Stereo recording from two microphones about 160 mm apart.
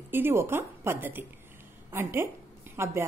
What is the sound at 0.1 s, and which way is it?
A woman's voice, 15° right (ahead or behind).